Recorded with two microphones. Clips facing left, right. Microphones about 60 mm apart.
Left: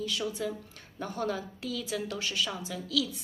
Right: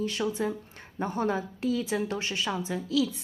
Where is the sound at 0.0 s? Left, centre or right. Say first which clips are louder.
Right 4 dB; right.